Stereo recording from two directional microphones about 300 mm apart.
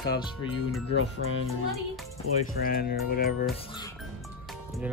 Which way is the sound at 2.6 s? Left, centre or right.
Left.